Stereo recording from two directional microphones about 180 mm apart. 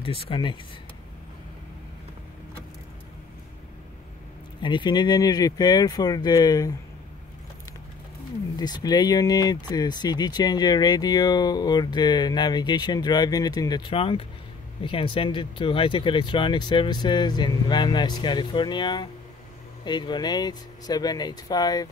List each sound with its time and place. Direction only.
0.0 s speech: 30° left (ahead or behind)
4.6 s speech: 25° left (ahead or behind)
8.5 s speech: 25° left (ahead or behind)